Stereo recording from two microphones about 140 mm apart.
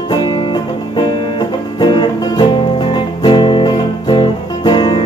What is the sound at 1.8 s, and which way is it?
Music, 30° left (ahead or behind).